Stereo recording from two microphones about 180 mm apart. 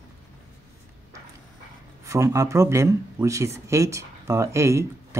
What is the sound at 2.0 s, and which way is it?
Speech, 15° right (ahead or behind).